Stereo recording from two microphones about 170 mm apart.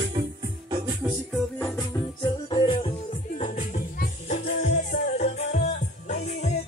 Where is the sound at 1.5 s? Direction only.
10° left (ahead or behind).